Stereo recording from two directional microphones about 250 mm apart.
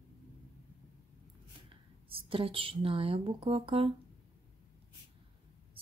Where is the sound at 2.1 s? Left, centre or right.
Right.